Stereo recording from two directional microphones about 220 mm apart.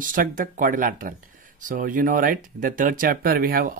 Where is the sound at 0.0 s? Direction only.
40° right (ahead or behind).